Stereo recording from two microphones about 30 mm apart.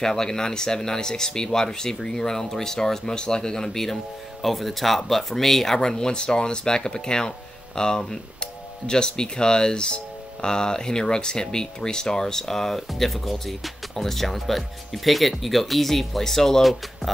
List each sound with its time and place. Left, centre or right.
0.0 s speech: centre
5.8 s speech: left